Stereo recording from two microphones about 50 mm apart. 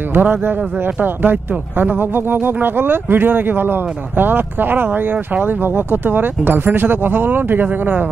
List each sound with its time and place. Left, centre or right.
0.1 s speech: right